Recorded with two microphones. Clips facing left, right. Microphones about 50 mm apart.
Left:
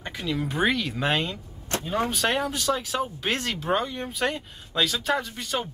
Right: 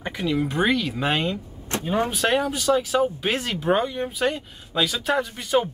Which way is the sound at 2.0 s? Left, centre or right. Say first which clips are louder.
Right 3 dB; centre.